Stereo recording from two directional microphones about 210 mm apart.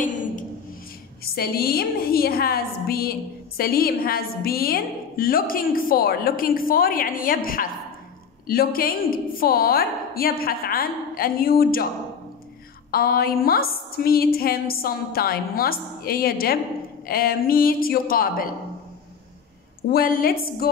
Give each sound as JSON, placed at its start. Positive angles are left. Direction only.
{"t": 0.0, "sound": "a sound", "side_deg": 40}
{"t": 1.2, "sound": "a woman's voice", "side_deg": 45}
{"t": 12.9, "sound": "a woman's voice", "side_deg": 45}
{"t": 19.9, "sound": "a woman's voice", "side_deg": 45}